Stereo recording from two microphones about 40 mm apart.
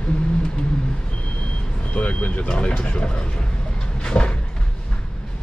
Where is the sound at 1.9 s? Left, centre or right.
Left.